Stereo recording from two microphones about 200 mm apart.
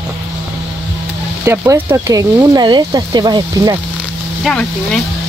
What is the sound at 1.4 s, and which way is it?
Speech, 15° right (ahead or behind).